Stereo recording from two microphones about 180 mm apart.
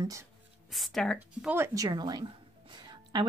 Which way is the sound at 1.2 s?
10° right (ahead or behind).